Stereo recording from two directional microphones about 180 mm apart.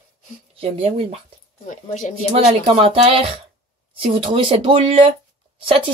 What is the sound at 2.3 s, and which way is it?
Speech, 35° right (ahead or behind).